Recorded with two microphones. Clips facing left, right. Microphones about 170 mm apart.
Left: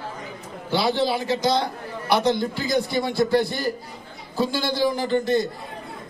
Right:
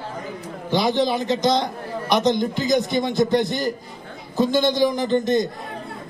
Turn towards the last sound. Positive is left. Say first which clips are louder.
# right 2 dB
turn(degrees=-20)  # may be behind; listen again after turning